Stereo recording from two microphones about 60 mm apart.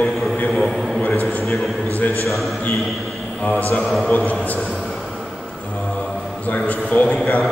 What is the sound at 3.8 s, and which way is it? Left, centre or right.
Speech, centre.